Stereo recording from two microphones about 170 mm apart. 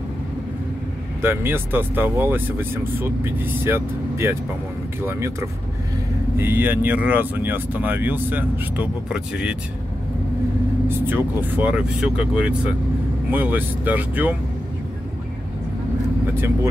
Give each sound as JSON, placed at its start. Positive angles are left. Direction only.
{"t": 1.2, "sound": "speech", "side_deg": -15}
{"t": 11.1, "sound": "speech", "side_deg": -10}